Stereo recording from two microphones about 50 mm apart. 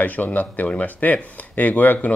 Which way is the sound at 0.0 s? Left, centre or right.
Left.